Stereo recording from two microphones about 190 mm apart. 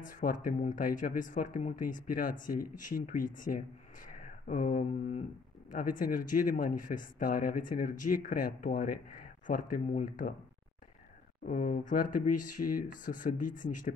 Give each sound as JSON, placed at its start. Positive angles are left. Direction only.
{"t": 0.0, "sound": "speech", "side_deg": 45}
{"t": 11.4, "sound": "speech", "side_deg": 45}